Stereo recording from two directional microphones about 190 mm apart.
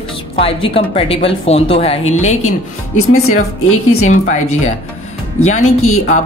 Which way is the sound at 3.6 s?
90° left.